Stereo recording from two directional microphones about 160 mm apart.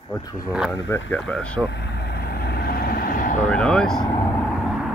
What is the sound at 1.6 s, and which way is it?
Vehicle, 90° left.